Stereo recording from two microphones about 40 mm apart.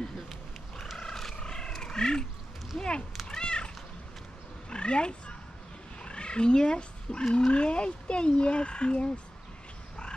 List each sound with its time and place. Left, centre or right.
0.9 s a sound: centre
3.3 s cat: left
7.5 s speech: left